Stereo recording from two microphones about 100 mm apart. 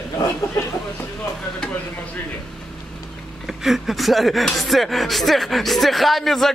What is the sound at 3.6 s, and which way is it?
Speech, centre (ahead or behind).